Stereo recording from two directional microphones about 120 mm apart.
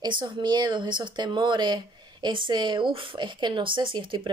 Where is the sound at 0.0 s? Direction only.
40° right (ahead or behind).